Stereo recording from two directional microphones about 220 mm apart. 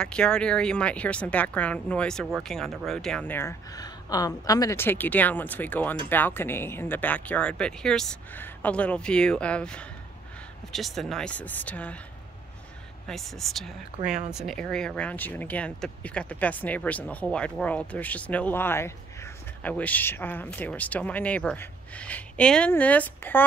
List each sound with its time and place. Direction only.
0.0 s speech: 5° left (ahead or behind)
13.0 s speech: centre (ahead or behind)
13.9 s speech: 30° right (ahead or behind)
14.3 s speech: centre (ahead or behind)